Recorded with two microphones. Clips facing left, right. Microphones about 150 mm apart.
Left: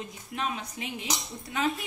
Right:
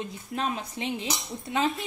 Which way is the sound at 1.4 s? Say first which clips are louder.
Right 2 dB; 25° right (ahead or behind).